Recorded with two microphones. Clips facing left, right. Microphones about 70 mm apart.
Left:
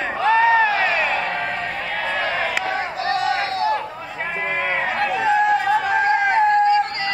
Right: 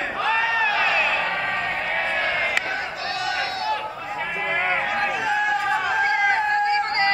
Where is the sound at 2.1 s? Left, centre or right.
Left.